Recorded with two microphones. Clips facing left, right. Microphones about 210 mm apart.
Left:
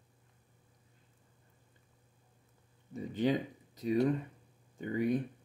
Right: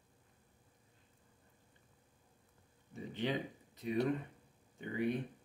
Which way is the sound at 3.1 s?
40° left (ahead or behind).